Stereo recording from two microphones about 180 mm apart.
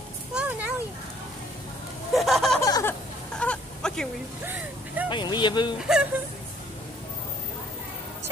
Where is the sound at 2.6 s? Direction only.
15° left (ahead or behind).